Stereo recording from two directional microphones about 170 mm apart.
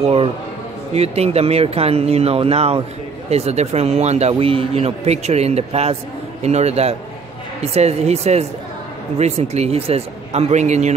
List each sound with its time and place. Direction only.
0.0 s speech: 35° right (ahead or behind)